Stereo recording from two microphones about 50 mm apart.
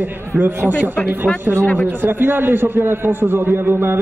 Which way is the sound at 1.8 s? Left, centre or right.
Right.